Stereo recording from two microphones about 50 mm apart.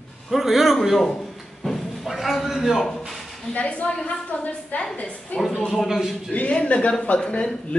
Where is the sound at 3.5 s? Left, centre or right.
Left.